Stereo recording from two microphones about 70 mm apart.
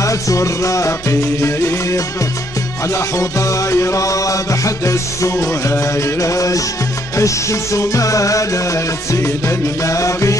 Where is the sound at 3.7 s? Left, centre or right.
Left.